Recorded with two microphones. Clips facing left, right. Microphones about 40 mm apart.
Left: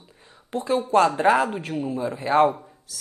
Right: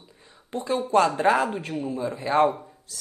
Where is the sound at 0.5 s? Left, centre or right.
Centre.